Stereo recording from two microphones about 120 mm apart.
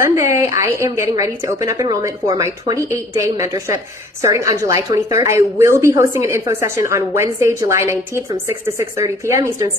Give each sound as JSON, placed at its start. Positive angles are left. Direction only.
{"t": 0.0, "sound": "a woman's voice", "side_deg": -25}